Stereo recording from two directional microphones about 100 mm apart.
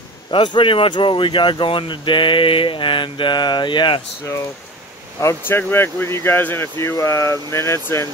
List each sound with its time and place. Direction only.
0.3 s speech: 55° left (ahead or behind)
5.2 s speech: 30° left (ahead or behind)